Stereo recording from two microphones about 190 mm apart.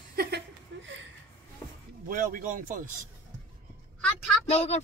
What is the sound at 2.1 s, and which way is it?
Speech, 45° right (ahead or behind).